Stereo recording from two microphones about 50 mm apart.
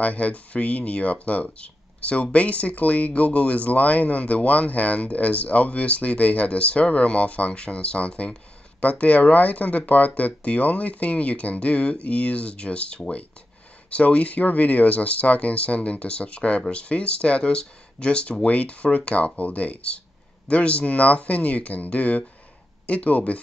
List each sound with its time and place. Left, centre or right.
0.0 s speech: left